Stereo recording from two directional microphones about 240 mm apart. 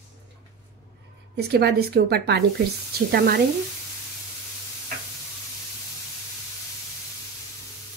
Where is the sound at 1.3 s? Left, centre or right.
Right.